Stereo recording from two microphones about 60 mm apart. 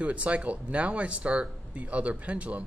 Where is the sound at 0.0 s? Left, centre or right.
Right.